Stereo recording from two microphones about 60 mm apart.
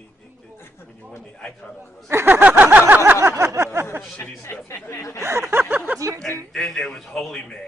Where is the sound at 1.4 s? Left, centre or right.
Centre.